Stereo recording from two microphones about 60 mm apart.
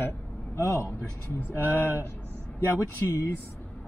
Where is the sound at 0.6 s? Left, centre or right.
Left.